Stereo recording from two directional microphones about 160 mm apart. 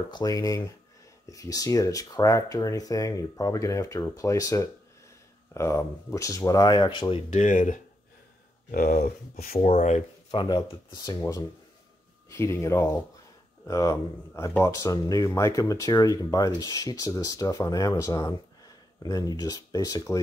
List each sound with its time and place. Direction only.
0.1 s speech: 20° left (ahead or behind)
7.2 s speech: 50° left (ahead or behind)
8.7 s speech: 65° left (ahead or behind)
9.8 s speech: 45° left (ahead or behind)
10.3 s speech: 30° left (ahead or behind)
11.1 s speech: 15° left (ahead or behind)